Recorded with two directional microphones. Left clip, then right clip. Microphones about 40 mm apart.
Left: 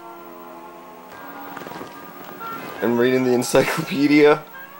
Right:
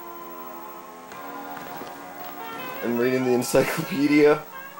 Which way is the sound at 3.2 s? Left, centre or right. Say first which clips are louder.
Left 3 dB; left.